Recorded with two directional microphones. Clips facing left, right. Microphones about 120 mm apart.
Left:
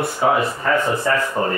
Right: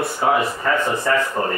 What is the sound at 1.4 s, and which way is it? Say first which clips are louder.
Speech: left 1 dB; centre (ahead or behind).